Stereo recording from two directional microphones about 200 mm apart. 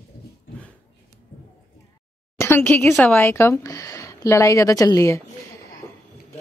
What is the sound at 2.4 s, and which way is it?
Speech, 10° left (ahead or behind).